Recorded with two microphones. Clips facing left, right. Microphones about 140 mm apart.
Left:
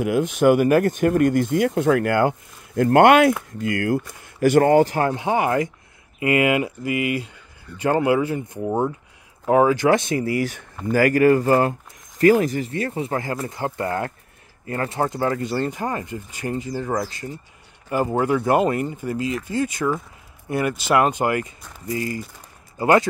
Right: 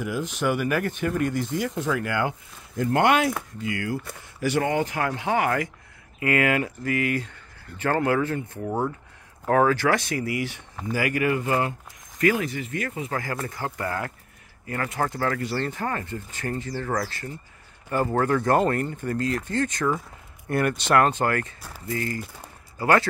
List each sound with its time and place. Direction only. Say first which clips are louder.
0.0 s speech: left 9 dB; 55° left (ahead or behind)
3.5 s speech: left 7 dB; 50° left (ahead or behind); by 5.1 s 35° left (ahead or behind)
5.1 s speech: left 3 dB; 20° left (ahead or behind)
10.4 s speech: left 5 dB; 45° left (ahead or behind); by 23.0 s 20° left (ahead or behind)